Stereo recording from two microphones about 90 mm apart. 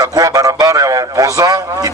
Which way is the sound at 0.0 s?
40° right (ahead or behind).